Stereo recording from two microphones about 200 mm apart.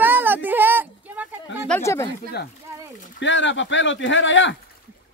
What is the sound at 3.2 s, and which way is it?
Speech, 65° left (ahead or behind).